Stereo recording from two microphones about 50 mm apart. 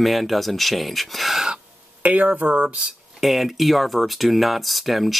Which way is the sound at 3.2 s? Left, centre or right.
Centre.